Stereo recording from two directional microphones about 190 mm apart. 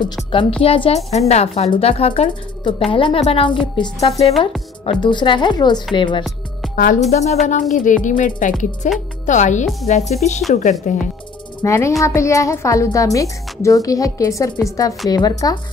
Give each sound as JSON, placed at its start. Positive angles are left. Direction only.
{"t": 0.0, "sound": "a woman's voice", "side_deg": 25}
{"t": 6.7, "sound": "music", "side_deg": 45}
{"t": 7.1, "sound": "a woman's voice", "side_deg": 35}
{"t": 11.6, "sound": "a woman's voice", "side_deg": 15}